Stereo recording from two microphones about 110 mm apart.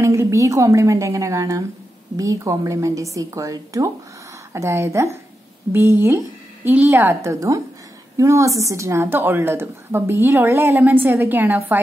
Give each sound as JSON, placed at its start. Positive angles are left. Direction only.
{"t": 0.0, "sound": "a woman's voice", "side_deg": -25}